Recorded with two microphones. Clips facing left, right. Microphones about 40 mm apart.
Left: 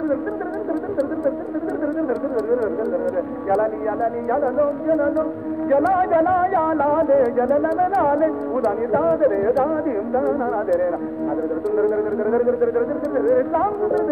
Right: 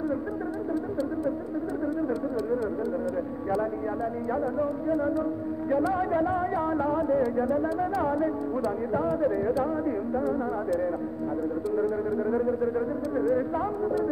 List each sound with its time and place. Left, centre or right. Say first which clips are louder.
3.4 s speech: left 9 dB; left
11.7 s speech: left 8 dB; left